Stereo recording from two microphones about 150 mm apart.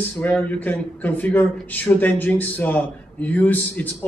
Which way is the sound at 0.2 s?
10° left (ahead or behind).